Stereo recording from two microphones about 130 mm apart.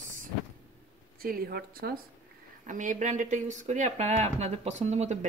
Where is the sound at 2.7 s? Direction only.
75° right (ahead or behind); by 5.2 s 60° right (ahead or behind).